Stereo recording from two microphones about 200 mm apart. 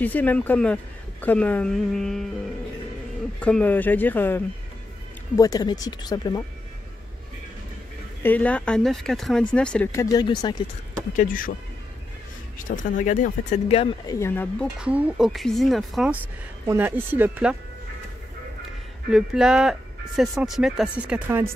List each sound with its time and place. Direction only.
0.0 s speech: 10° left (ahead or behind)
3.3 s speech: 5° left (ahead or behind)
8.2 s speech: 10° left (ahead or behind)
9.9 s speech: 20° left (ahead or behind)
11.1 s speech: 45° left (ahead or behind)
12.5 s speech: 40° left (ahead or behind); by 14.7 s 10° left (ahead or behind)
14.8 s speech: 5° right (ahead or behind)
19.0 s speech: 5° right (ahead or behind)